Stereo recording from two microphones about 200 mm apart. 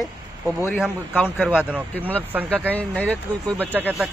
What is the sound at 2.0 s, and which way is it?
Speech, 10° right (ahead or behind).